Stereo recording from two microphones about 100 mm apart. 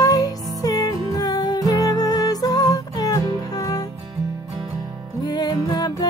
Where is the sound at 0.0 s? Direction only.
35° left (ahead or behind).